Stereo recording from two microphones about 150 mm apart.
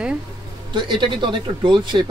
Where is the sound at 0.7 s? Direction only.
30° right (ahead or behind).